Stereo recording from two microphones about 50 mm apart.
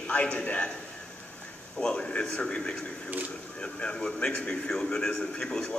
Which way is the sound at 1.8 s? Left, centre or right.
Centre.